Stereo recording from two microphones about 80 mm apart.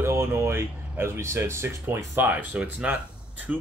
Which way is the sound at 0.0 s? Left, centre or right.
Right.